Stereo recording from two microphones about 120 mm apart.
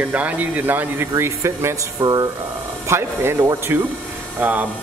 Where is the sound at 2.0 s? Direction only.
35° right (ahead or behind).